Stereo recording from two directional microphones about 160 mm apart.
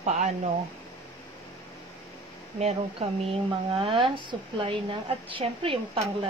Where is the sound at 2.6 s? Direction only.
40° right (ahead or behind).